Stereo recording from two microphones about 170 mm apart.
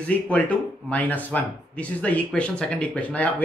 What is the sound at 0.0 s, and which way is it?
Speech, 10° left (ahead or behind).